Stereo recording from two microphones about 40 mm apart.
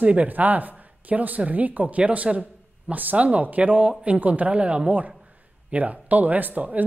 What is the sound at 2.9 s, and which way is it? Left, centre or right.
Speech, right.